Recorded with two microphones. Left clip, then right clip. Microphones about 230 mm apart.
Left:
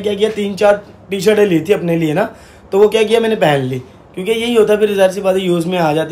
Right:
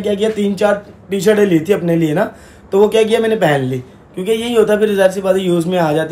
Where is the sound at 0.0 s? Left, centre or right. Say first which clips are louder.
Even; centre.